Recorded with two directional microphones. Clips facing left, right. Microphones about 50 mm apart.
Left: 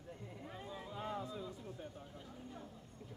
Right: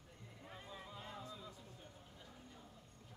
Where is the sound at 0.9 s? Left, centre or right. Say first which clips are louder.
Left 12 dB; centre.